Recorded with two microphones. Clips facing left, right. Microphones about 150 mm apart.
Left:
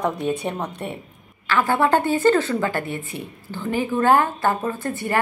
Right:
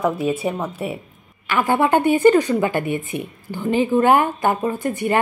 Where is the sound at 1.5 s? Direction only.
15° right (ahead or behind).